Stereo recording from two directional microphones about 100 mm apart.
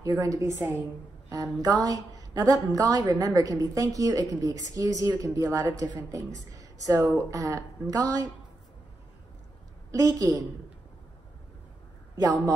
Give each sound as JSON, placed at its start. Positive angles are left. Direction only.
{"t": 0.0, "sound": "a woman's voice", "side_deg": -35}
{"t": 1.3, "sound": "a woman's voice", "side_deg": -35}
{"t": 9.8, "sound": "a woman's voice", "side_deg": -35}
{"t": 12.2, "sound": "a woman's voice", "side_deg": -35}